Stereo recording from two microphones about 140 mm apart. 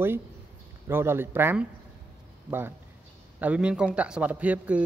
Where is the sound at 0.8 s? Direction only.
15° right (ahead or behind).